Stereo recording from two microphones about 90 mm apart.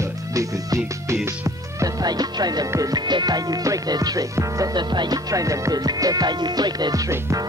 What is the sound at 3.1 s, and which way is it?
Music, 50° right (ahead or behind).